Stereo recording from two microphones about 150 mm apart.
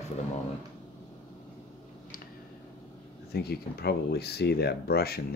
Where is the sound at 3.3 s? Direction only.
90° left.